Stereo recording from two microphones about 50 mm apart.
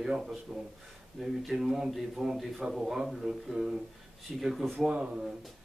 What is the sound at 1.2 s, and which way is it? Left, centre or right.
Speech, centre.